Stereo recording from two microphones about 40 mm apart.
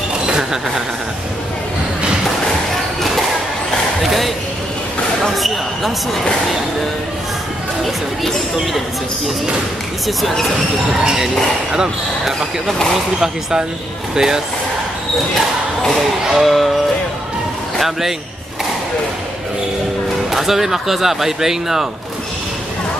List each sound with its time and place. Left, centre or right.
0.3 s a sound: centre
4.0 s speech: centre
5.3 s speech: centre
10.0 s speech: centre
12.6 s speech: centre
13.2 s speech: centre
16.0 s speech: centre
17.7 s a sound: centre
20.2 s speech: centre